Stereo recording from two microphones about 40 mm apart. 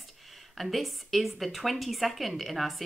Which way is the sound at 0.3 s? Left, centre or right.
Centre.